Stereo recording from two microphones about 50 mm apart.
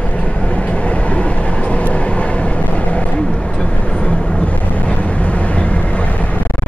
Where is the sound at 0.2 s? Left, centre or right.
Left.